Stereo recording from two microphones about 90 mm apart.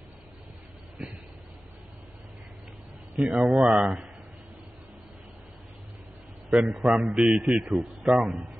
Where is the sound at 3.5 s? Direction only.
5° right (ahead or behind).